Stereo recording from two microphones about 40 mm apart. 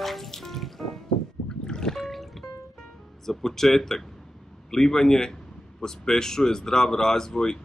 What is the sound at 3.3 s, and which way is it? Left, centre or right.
Speech, centre.